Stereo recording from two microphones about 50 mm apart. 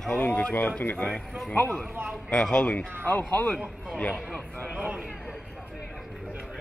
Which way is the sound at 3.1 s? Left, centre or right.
Left.